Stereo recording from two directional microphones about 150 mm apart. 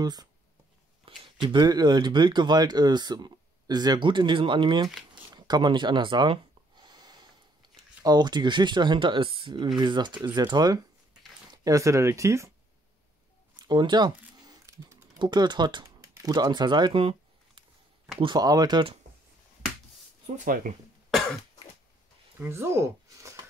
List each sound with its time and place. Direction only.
0.0 s speech: 25° right (ahead or behind)
5.3 s gasp: 30° right (ahead or behind)
8.0 s speech: 25° right (ahead or behind)
13.6 s a sound: 30° right (ahead or behind)
18.2 s speech: 25° right (ahead or behind)
20.3 s speech: 65° right (ahead or behind)
21.1 s cough: centre (ahead or behind)
22.4 s speech: 15° right (ahead or behind)